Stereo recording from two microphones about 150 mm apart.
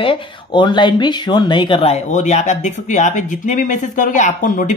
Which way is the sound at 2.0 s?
50° left (ahead or behind).